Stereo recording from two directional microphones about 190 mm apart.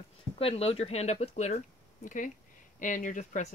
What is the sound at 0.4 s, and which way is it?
Speech, 30° left (ahead or behind).